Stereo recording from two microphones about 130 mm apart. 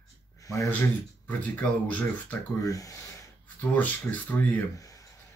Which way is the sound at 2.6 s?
25° left (ahead or behind).